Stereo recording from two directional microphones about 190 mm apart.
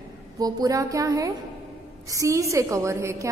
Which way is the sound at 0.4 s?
20° right (ahead or behind).